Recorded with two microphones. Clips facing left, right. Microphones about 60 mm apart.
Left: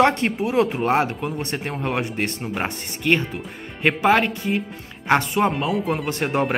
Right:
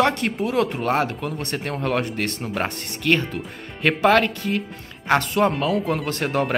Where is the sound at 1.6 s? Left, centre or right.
Centre.